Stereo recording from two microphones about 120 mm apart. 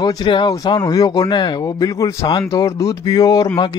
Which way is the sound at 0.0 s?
35° left (ahead or behind).